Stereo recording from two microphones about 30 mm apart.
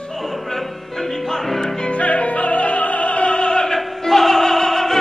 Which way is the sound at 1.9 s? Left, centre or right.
Left.